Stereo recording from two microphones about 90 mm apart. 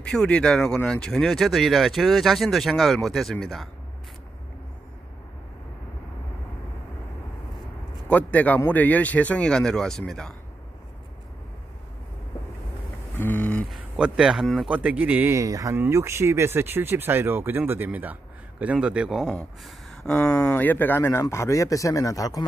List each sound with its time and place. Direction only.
0.0 s speech: 10° left (ahead or behind)
8.1 s speech: 15° left (ahead or behind)
13.2 s a sound: 20° left (ahead or behind)
13.7 s speech: 10° right (ahead or behind)
14.7 s speech: 15° right (ahead or behind)
15.3 s speech: 40° right (ahead or behind)
15.7 s speech: 25° right (ahead or behind); by 19.2 s 5° right (ahead or behind)
19.6 s a sound: 5° left (ahead or behind)
20.4 s a man's voice: 20° left (ahead or behind); by 22.4 s 40° left (ahead or behind)